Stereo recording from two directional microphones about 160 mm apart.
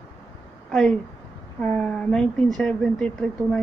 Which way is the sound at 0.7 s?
5° left (ahead or behind).